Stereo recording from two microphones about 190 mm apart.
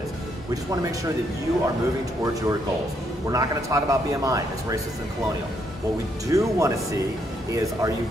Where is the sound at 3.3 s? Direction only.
20° right (ahead or behind).